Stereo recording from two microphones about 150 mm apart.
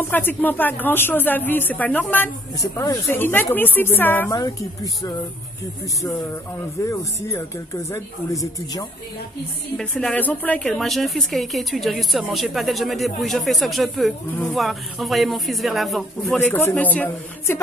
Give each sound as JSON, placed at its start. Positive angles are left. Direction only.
{"t": 0.0, "sound": "speech", "side_deg": 15}
{"t": 4.4, "sound": "speech", "side_deg": 25}
{"t": 6.8, "sound": "speech", "side_deg": 20}
{"t": 9.8, "sound": "a woman's voice", "side_deg": 5}